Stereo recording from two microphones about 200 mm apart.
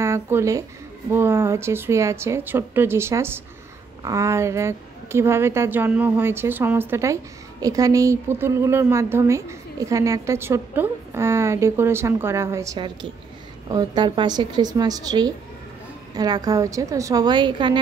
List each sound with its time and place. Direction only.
0.0 s a woman's voice: 15° right (ahead or behind)